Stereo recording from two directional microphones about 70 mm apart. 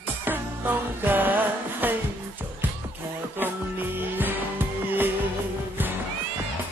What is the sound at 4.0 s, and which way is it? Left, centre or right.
Music, right.